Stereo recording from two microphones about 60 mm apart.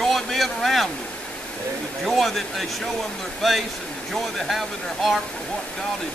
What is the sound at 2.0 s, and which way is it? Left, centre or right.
Speech, centre.